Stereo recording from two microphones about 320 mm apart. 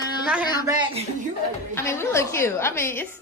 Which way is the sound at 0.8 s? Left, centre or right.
Centre.